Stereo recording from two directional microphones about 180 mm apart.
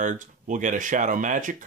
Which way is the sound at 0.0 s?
45° right (ahead or behind).